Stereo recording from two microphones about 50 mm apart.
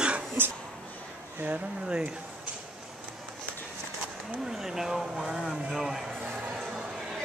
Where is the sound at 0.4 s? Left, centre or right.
Right.